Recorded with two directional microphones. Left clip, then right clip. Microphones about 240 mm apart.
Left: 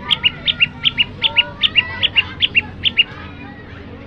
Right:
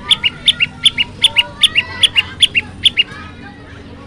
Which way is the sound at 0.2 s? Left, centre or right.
Centre.